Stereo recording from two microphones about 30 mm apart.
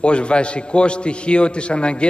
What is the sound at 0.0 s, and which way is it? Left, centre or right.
A man's voice, left.